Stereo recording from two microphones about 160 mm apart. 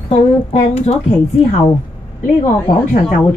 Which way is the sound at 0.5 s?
40° left (ahead or behind).